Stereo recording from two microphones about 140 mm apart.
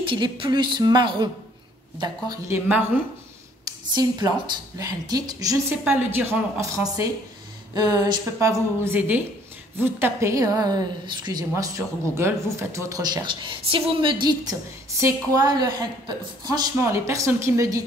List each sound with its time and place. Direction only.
0.0 s speech: 35° right (ahead or behind)
2.4 s speech: 20° right (ahead or behind)
3.6 s a sound: 30° right (ahead or behind)
4.7 s speech: 25° right (ahead or behind)
5.9 s a woman's voice: 15° right (ahead or behind)
7.7 s speech: 30° right (ahead or behind)
11.5 s speech: 20° right (ahead or behind)